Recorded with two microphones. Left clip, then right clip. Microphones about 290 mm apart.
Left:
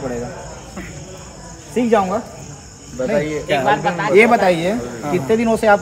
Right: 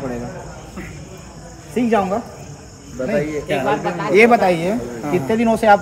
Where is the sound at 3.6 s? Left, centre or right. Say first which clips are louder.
Left 3 dB; left.